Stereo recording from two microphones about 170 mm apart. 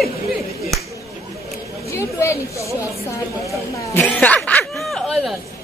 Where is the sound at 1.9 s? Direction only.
15° left (ahead or behind).